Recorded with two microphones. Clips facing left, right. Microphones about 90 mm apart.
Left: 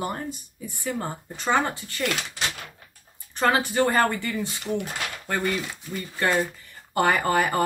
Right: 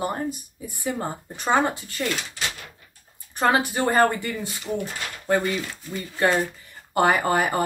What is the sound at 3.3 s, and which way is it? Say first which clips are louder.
Speech: right 1 dB; 15° right (ahead or behind).